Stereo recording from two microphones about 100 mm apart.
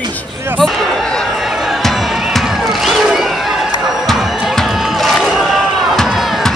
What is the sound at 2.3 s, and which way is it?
Crowd, centre (ahead or behind).